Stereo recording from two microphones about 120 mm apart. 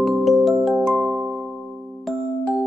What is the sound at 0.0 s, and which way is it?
Music, centre (ahead or behind).